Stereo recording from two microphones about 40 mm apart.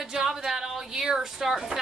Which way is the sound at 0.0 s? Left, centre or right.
Centre.